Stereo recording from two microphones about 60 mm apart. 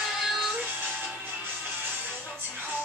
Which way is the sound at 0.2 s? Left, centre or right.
Centre.